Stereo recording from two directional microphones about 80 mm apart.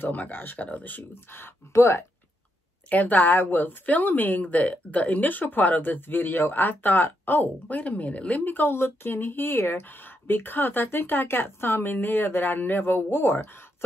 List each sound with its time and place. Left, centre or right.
0.0 s speech: left
2.9 s speech: left